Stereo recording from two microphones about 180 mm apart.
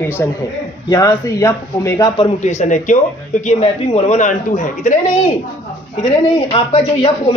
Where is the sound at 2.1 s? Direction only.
35° left (ahead or behind).